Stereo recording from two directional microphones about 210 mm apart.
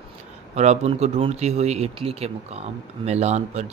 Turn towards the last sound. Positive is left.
turn(degrees=-30)  # may be behind; listen again after turning